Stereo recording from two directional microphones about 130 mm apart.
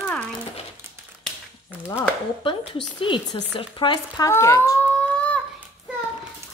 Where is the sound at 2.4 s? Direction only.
40° left (ahead or behind).